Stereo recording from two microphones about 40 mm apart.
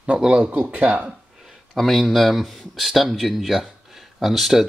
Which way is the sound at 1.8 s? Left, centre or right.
Centre.